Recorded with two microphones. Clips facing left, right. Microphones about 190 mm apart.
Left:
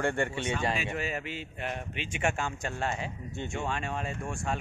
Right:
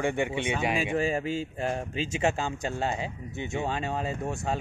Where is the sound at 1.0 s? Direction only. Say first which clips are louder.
Right 7 dB; 35° right (ahead or behind).